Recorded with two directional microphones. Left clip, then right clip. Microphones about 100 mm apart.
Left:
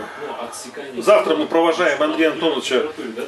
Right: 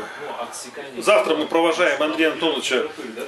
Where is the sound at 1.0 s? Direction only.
10° right (ahead or behind).